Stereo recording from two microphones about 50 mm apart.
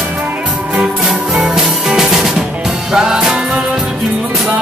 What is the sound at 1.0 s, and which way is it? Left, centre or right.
Music, centre.